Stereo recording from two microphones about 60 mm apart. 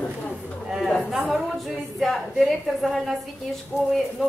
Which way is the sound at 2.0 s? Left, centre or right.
Centre.